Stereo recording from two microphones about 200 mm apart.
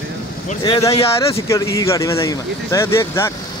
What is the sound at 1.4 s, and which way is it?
Speech, 15° left (ahead or behind).